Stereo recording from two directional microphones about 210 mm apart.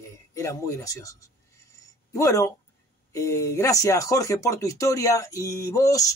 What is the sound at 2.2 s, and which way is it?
Speech, 15° left (ahead or behind).